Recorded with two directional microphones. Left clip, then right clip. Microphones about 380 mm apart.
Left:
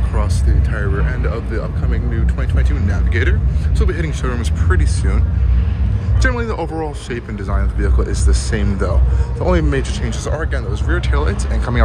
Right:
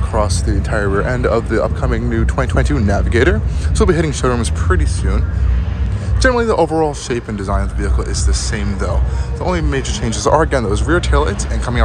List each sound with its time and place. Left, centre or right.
0.1 s speech: centre
6.2 s speech: centre